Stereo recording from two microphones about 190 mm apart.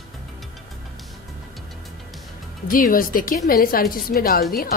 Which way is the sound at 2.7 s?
45° left (ahead or behind).